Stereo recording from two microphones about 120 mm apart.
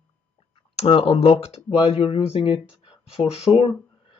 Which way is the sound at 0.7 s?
55° left (ahead or behind).